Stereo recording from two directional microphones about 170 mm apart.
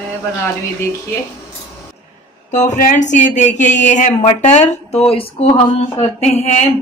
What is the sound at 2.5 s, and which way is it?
A woman's voice, 45° left (ahead or behind).